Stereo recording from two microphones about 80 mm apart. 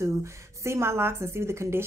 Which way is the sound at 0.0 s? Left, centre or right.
Right.